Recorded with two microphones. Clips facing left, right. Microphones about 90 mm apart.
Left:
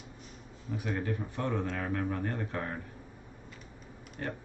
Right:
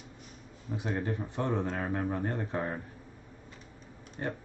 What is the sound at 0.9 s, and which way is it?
Speech, 25° right (ahead or behind).